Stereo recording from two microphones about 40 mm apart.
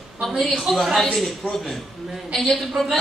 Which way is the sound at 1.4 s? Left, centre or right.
Left.